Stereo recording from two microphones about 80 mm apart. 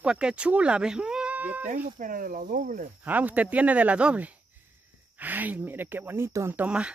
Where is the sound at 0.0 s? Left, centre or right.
Centre.